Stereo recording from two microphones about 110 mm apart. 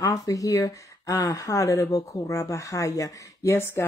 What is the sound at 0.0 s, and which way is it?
Speech, 30° left (ahead or behind).